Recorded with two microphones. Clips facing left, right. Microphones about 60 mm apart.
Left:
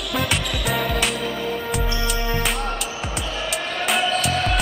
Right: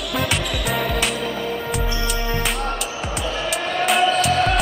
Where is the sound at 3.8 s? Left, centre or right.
Centre.